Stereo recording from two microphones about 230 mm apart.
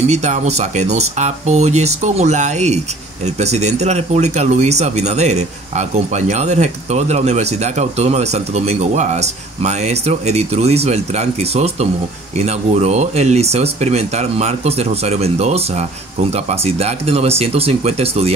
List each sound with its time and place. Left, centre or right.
0.0 s speech: right